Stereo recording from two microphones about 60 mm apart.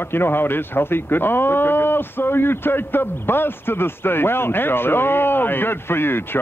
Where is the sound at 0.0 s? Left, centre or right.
Left.